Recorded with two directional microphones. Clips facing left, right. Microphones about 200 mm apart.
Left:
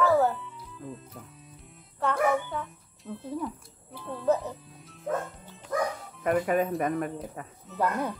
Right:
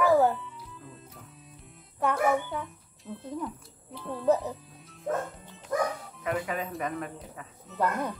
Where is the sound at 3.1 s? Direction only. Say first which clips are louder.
Left 2 dB; 5° left (ahead or behind).